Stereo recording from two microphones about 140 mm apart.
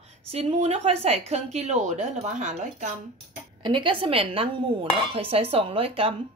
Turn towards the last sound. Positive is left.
turn(degrees=-40)  # may be behind; listen again after turning